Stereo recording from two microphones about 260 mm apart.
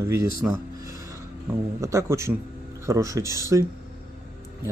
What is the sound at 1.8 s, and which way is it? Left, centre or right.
Speech, centre.